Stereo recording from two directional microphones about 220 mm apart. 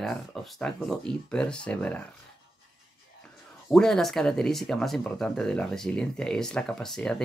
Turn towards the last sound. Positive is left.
turn(degrees=0)  # may be behind; listen again after turning